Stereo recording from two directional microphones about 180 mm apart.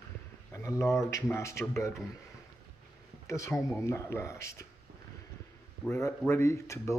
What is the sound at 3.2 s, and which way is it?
A man's voice, 15° left (ahead or behind).